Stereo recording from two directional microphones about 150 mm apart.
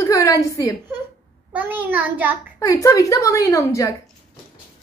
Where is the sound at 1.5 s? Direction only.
10° right (ahead or behind).